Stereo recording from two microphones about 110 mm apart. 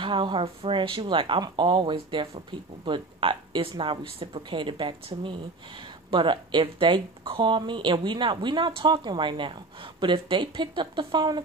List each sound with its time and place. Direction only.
0.0 s speech: 50° right (ahead or behind)